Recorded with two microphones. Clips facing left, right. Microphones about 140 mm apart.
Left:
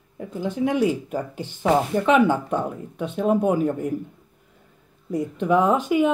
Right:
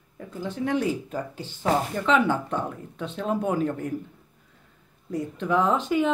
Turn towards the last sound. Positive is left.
turn(degrees=10)  # may be behind; listen again after turning